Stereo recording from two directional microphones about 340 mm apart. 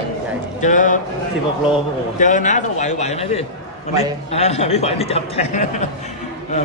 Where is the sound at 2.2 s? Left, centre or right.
Left.